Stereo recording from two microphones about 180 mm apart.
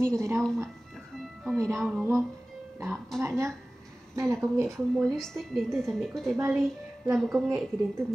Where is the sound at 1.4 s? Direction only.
Centre (ahead or behind).